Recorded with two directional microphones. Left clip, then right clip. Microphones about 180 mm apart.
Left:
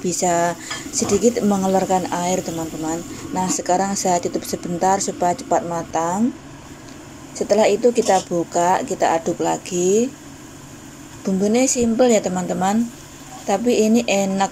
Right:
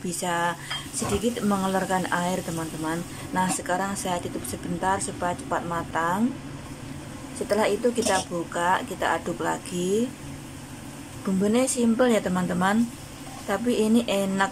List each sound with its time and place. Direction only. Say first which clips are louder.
0.0 s speech: left 8 dB; 20° left (ahead or behind)
7.3 s speech: left 8 dB; 15° left (ahead or behind)
11.2 s speech: left 6 dB; 10° left (ahead or behind)